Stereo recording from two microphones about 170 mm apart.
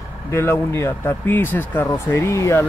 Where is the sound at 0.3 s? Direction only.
15° left (ahead or behind).